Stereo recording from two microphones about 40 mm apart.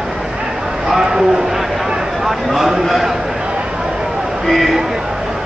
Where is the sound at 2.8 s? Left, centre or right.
Centre.